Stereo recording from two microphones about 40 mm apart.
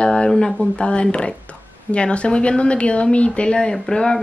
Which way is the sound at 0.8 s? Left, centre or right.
Left.